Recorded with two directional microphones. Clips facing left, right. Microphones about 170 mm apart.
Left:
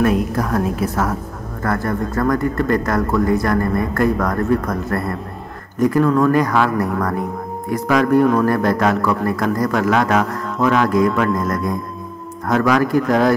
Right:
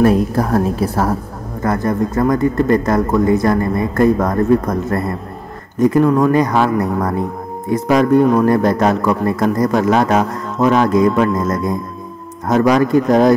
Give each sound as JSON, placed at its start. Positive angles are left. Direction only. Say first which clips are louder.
{"t": 0.0, "sound": "a woman's voice", "louder": "right 4 dB", "side_deg": -35}
{"t": 1.6, "sound": "a man's voice", "louder": "right 4 dB", "side_deg": -20}